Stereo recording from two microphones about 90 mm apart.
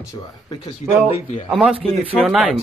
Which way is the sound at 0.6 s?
85° left.